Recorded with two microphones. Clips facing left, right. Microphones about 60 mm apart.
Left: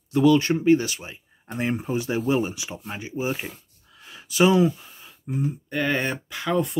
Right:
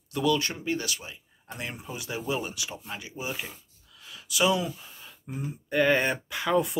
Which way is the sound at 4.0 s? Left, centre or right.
Left.